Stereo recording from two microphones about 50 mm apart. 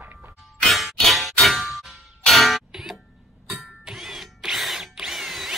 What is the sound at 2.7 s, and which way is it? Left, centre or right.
Music, centre.